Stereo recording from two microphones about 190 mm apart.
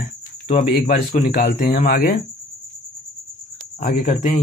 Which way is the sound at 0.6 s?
50° left (ahead or behind).